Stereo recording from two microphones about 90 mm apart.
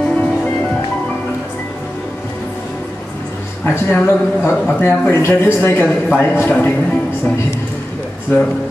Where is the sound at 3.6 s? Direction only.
25° left (ahead or behind).